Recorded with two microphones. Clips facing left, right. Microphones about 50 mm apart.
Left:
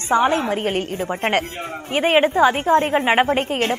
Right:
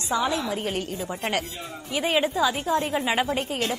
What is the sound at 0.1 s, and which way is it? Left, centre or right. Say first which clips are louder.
A woman's voice: left 8 dB; left.